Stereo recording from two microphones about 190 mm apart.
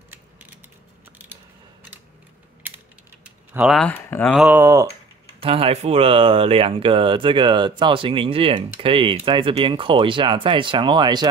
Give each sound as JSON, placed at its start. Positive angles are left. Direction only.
{"t": 0.1, "sound": "mechanisms", "side_deg": -10}
{"t": 1.1, "sound": "a sound", "side_deg": -10}
{"t": 3.5, "sound": "speech", "side_deg": -5}
{"t": 3.8, "sound": "speech", "side_deg": 10}
{"t": 4.3, "sound": "speech", "side_deg": -5}
{"t": 5.4, "sound": "speech", "side_deg": -30}